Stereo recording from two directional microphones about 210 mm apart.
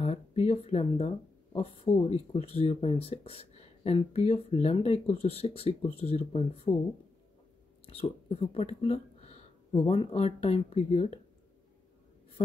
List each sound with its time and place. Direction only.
0.0 s speech: 30° left (ahead or behind)
7.8 s speech: 30° left (ahead or behind)